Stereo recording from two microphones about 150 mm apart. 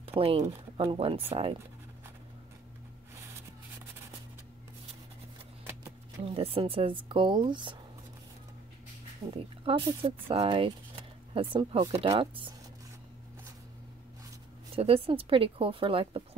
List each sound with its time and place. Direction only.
0.0 s a sound: 40° right (ahead or behind)
0.5 s speech: 40° right (ahead or behind)
6.2 s speech: 40° right (ahead or behind)
9.3 s speech: 35° right (ahead or behind)
14.8 s speech: 40° right (ahead or behind)